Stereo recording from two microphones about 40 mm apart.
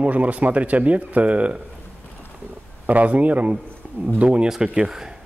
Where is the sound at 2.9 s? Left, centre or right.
Right.